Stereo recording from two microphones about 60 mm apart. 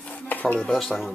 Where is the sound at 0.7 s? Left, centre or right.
Centre.